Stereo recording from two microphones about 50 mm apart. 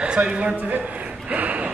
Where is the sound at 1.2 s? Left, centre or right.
Right.